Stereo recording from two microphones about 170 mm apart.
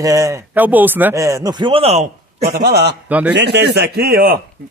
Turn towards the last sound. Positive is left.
turn(degrees=-60)  # may be behind; listen again after turning